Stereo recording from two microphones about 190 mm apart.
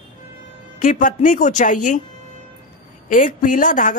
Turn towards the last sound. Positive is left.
turn(degrees=45)  # may be behind; listen again after turning